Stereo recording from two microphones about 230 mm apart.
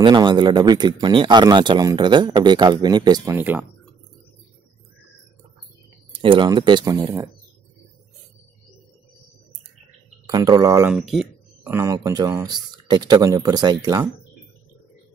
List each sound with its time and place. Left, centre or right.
0.0 s speech: centre
6.1 s speech: right
10.2 s speech: centre
10.9 s speech: centre